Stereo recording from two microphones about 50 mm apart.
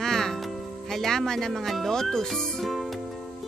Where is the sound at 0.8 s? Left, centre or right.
Centre.